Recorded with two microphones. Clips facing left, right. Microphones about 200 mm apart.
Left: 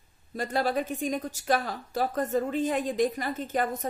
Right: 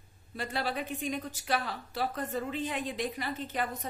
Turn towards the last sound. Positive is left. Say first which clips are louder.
# left 6 dB
turn(degrees=45)  # may be behind; listen again after turning